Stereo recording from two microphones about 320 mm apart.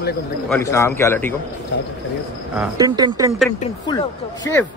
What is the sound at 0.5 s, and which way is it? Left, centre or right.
Speech, centre.